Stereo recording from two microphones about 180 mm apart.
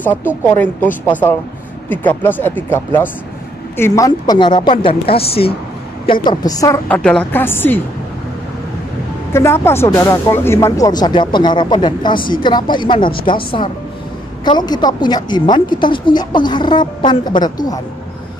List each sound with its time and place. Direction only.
0.6 s speech: 10° left (ahead or behind); by 5.6 s 30° left (ahead or behind)
6.2 s speech: 20° left (ahead or behind)
6.9 s speech: 5° left (ahead or behind)
9.3 s speech: 15° left (ahead or behind)